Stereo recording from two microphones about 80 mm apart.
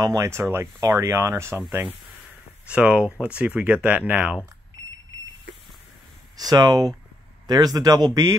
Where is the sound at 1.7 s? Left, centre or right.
Right.